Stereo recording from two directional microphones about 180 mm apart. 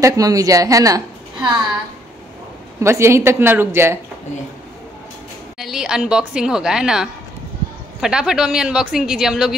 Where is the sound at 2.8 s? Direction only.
15° right (ahead or behind).